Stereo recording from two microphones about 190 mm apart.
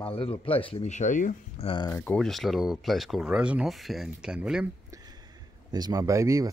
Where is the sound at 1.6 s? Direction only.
25° left (ahead or behind).